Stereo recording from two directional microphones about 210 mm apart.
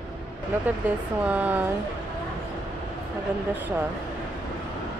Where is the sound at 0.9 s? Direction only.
5° right (ahead or behind).